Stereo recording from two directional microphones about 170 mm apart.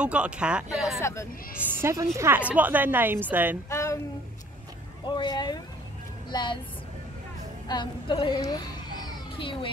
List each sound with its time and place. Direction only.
0.0 s a woman's voice: 5° right (ahead or behind)
1.6 s a woman's voice: 15° right (ahead or behind)
3.7 s a sound: 15° left (ahead or behind)
5.0 s a woman's voice: 25° left (ahead or behind)
7.6 s a woman's voice: 25° left (ahead or behind)
9.0 s children playing: 30° left (ahead or behind)